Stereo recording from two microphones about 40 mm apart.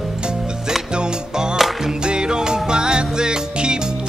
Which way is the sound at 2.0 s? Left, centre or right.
Right.